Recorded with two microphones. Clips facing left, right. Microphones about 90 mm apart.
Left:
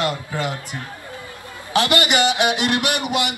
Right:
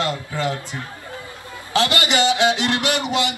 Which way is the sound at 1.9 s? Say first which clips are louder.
Left 1 dB; 20° left (ahead or behind).